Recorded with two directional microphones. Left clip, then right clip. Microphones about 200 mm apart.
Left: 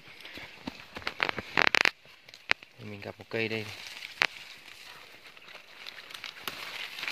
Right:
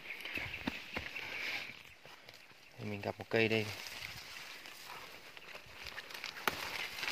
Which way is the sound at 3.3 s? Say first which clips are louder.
Even; centre (ahead or behind).